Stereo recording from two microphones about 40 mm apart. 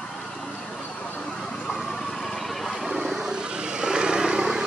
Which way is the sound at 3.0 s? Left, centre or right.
Centre.